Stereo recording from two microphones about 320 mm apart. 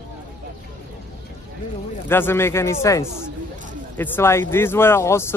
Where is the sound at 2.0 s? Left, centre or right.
Centre.